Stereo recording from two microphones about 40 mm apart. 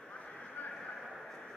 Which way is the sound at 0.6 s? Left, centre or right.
Left.